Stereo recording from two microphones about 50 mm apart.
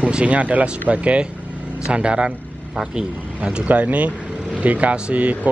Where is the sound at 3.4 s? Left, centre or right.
Right.